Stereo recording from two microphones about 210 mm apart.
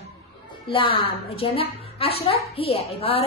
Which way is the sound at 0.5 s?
25° left (ahead or behind).